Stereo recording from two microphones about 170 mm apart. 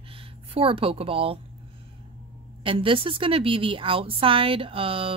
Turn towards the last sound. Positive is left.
turn(degrees=-35)  # may be behind; listen again after turning